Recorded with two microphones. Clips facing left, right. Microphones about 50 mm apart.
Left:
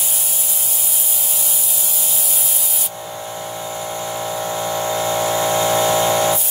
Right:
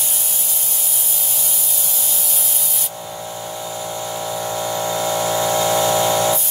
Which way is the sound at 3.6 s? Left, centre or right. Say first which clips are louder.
Left 1 dB; left.